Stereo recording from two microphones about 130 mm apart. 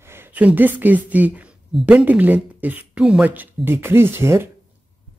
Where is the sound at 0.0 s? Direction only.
15° right (ahead or behind).